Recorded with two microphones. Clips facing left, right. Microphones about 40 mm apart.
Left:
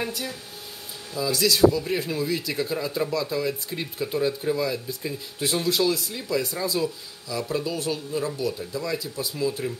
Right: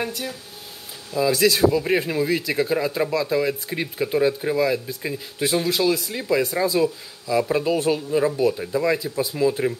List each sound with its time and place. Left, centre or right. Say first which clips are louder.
0.0 s a man's voice: right 2 dB; centre
1.1 s a man's voice: right 5 dB; right
6.1 s speech: right 6 dB; right